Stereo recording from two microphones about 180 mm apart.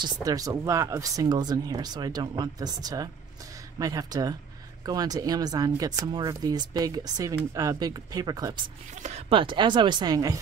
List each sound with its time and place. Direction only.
0.0 s speech: 20° right (ahead or behind)
8.9 s speech: 40° right (ahead or behind)
9.3 s speech: 25° right (ahead or behind)